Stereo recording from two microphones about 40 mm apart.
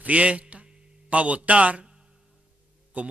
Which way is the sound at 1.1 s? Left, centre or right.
Right.